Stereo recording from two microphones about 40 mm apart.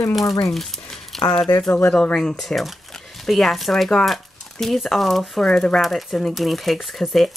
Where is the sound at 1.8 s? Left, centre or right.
Centre.